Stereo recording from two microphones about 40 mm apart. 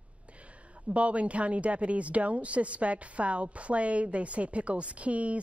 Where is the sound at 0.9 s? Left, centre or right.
Right.